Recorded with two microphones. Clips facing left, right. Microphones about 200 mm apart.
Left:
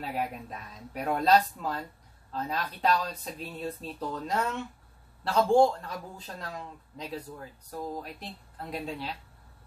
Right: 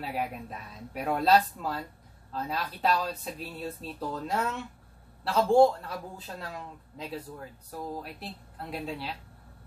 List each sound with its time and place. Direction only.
0.0 s a man's voice: 5° right (ahead or behind)